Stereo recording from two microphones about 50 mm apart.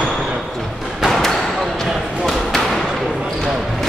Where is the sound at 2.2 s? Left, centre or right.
Centre.